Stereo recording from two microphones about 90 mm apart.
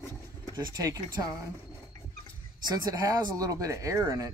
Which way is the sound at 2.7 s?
40° right (ahead or behind).